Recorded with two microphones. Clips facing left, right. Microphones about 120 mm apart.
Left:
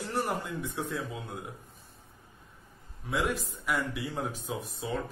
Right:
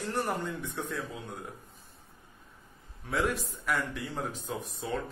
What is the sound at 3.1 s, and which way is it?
Speech, centre (ahead or behind).